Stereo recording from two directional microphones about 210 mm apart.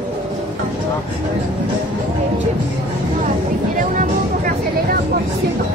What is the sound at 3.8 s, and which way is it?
Music, 40° right (ahead or behind).